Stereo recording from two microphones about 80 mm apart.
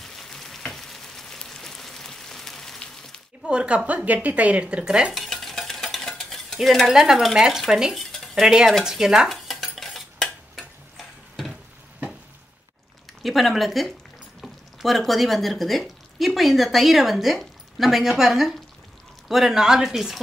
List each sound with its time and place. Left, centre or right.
0.0 s frying: centre
3.4 s speech: centre
5.1 s stir: centre
8.0 s dishes: centre
11.0 s a sound: centre
13.2 s speech: centre